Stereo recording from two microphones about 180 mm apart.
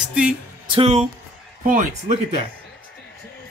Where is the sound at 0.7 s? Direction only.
35° right (ahead or behind).